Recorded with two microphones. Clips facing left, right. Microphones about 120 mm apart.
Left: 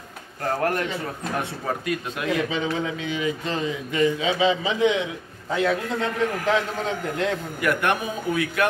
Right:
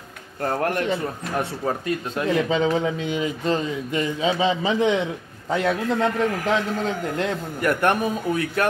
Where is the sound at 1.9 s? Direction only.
35° right (ahead or behind).